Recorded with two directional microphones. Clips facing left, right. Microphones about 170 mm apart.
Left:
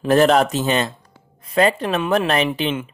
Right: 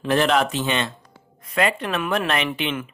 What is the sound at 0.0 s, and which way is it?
Speech, 40° left (ahead or behind).